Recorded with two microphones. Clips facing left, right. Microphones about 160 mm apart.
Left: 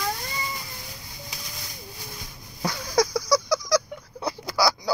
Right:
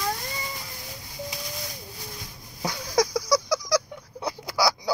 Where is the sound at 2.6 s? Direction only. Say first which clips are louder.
Left 1 dB; 15° right (ahead or behind).